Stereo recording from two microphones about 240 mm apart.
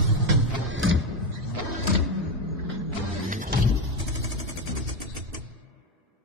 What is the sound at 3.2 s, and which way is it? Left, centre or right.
Music, right.